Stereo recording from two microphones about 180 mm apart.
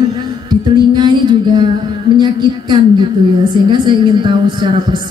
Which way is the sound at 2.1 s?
25° right (ahead or behind).